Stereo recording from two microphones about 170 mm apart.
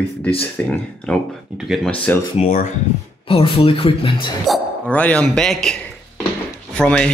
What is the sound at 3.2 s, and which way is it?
Speech, 30° left (ahead or behind).